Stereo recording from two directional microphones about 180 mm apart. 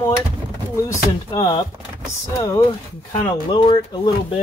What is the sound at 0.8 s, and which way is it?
Speech, 20° left (ahead or behind).